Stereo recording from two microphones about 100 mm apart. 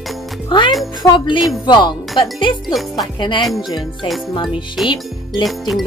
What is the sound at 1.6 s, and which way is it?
Speech, 50° left (ahead or behind).